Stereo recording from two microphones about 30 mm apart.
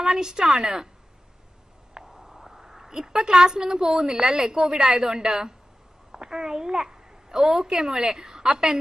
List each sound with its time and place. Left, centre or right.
0.0 s a woman's voice: right
2.0 s a sound: centre
3.2 s a woman's voice: right